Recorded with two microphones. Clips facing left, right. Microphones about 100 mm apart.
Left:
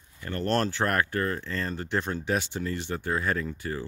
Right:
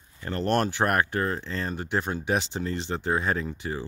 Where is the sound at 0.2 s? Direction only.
25° right (ahead or behind).